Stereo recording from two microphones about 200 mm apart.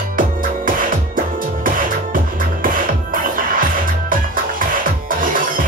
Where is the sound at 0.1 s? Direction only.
45° right (ahead or behind).